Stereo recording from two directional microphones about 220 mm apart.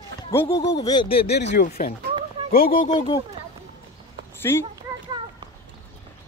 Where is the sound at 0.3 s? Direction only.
10° left (ahead or behind); by 2.0 s 30° left (ahead or behind).